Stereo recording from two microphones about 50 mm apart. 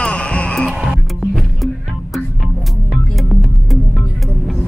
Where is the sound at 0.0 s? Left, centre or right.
Left.